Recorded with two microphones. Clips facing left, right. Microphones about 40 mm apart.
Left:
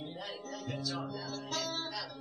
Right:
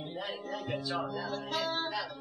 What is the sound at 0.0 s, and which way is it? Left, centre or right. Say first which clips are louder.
Music: right 4 dB; right.